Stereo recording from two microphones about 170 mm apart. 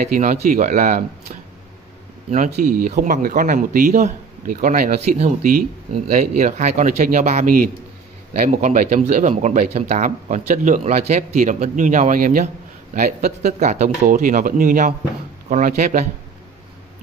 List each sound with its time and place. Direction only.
0.1 s speech: 50° right (ahead or behind)